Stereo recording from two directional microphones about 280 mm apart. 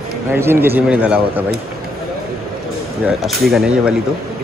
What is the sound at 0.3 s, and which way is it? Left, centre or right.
A man's voice, centre.